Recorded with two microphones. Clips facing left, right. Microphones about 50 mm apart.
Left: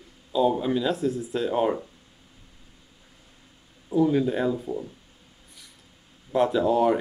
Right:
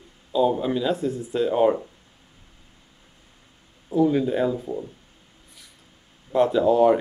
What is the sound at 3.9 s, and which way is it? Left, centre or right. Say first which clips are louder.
Speech: right 1 dB; centre.